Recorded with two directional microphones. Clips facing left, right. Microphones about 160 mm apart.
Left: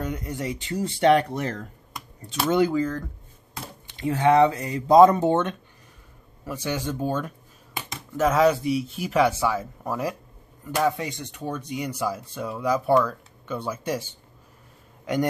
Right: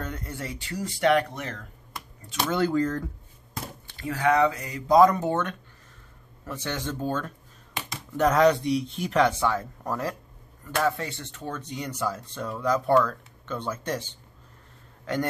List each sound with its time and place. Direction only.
0.0 s speech: 15° left (ahead or behind); by 1.7 s 35° left (ahead or behind)
2.7 s speech: centre (ahead or behind)
3.8 s speech: 20° left (ahead or behind)
6.4 s speech: 10° left (ahead or behind)